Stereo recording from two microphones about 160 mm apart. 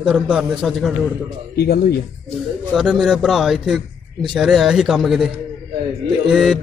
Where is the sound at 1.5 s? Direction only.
75° left (ahead or behind).